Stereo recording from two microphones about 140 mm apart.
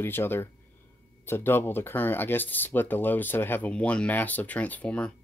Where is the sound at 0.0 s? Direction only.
15° left (ahead or behind).